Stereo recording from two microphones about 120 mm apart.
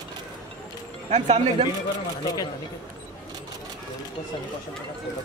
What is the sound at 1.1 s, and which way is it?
Speech, 65° right (ahead or behind).